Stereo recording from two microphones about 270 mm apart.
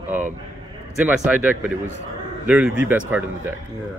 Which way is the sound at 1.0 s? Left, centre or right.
Centre.